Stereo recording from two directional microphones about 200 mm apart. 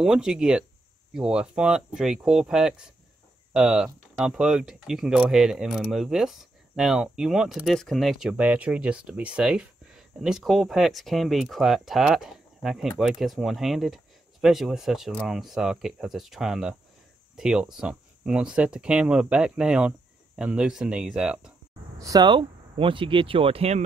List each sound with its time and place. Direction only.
0.0 s speech: 5° right (ahead or behind)
22.0 s speech: 20° right (ahead or behind)